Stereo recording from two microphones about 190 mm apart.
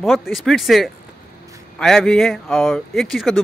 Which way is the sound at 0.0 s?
Centre (ahead or behind).